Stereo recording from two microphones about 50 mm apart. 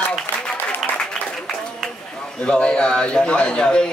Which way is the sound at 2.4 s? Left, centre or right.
Centre.